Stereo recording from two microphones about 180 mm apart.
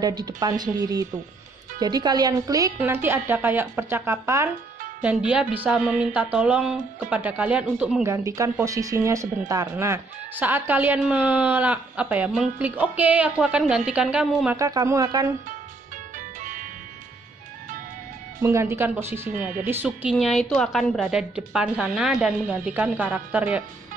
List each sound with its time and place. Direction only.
0.0 s speech: 20° right (ahead or behind); by 14.6 s 5° right (ahead or behind)
14.6 s speech: 20° right (ahead or behind)
16.3 s music: 45° right (ahead or behind)
18.4 s speech: 15° right (ahead or behind)